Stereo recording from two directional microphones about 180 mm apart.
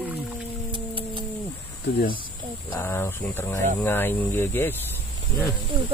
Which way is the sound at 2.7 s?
15° left (ahead or behind).